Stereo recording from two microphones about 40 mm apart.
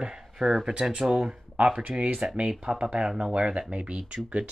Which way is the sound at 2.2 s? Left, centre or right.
Right.